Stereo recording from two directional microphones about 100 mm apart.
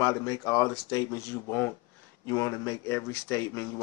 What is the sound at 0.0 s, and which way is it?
Speech, 35° left (ahead or behind).